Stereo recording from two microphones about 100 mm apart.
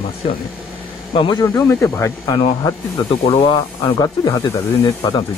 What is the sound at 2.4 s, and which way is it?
Speech, 55° left (ahead or behind).